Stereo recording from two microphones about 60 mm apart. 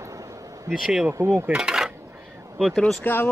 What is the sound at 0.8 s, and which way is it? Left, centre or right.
Speech, centre.